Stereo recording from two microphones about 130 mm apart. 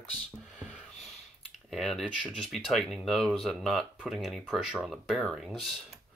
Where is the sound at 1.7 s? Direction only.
Centre (ahead or behind).